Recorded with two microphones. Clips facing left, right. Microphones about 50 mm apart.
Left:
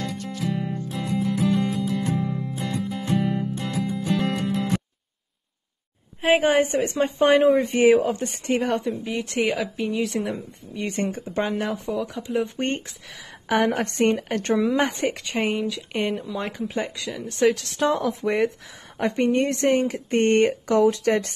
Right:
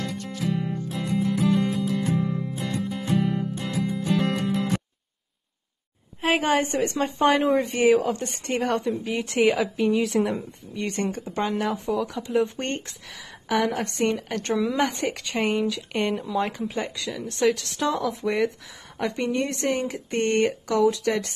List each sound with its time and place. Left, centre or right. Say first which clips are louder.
0.0 s music: even; centre
6.2 s a sound: left 4 dB; centre
6.5 s speech: left 2 dB; centre
7.4 s a woman's voice: left 4 dB; centre
7.7 s speech: left 3 dB; left
8.3 s a woman's voice: left 2 dB; centre
10.8 s speech: left 1 dB; centre
11.6 s a woman's voice: right 1 dB; centre
12.5 s speech: left 3 dB; centre
13.5 s a woman's voice: left 2 dB; left
15.3 s a woman's voice: even; centre
17.4 s speech: left 3 dB; left